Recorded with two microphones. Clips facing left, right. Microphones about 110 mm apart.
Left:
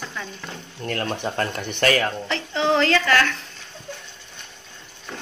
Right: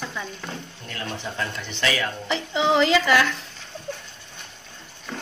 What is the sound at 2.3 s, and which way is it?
Speech, 10° right (ahead or behind).